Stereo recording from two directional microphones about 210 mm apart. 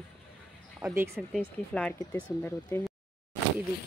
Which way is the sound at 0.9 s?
10° right (ahead or behind).